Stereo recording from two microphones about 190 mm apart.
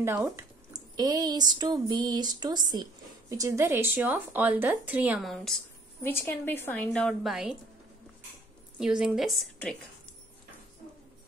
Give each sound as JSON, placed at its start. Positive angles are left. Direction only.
{"t": 0.0, "sound": "speech", "side_deg": -15}
{"t": 6.0, "sound": "a woman's voice", "side_deg": 10}
{"t": 8.7, "sound": "a woman's voice", "side_deg": -5}